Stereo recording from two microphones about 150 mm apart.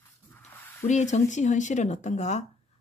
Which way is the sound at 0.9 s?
50° left (ahead or behind).